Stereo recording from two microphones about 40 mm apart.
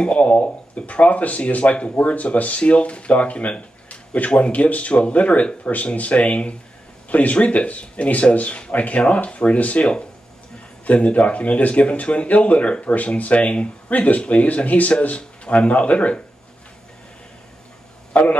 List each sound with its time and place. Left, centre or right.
0.0 s speech: left
13.8 s speech: left
18.1 s a man's voice: left